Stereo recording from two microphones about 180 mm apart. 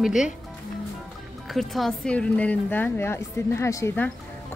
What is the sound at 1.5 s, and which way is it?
A woman's voice, centre (ahead or behind).